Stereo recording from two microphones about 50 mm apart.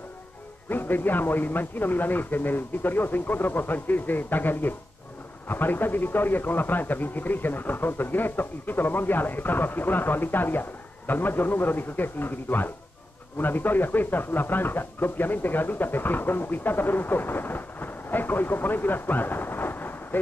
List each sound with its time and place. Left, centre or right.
0.7 s speech: left